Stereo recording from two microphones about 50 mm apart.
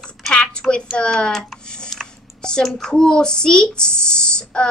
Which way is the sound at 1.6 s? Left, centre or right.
Centre.